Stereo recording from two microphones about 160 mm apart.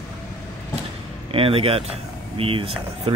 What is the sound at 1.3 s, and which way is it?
Speech, 35° right (ahead or behind).